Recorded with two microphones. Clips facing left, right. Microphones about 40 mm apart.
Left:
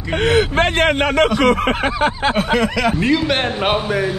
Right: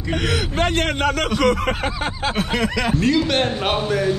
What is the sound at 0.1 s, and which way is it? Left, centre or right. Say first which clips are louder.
A man's voice: left 7 dB; left.